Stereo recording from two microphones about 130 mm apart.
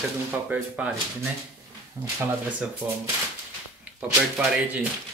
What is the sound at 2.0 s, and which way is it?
Speech, 25° right (ahead or behind).